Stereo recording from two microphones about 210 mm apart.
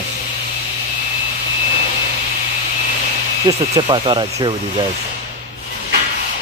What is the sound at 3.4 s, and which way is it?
Speech, 20° right (ahead or behind).